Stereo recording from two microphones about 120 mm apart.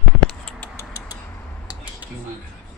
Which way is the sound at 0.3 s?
10° left (ahead or behind).